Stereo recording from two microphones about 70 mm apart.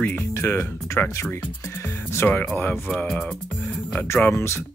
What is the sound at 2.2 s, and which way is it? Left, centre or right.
Speech, left.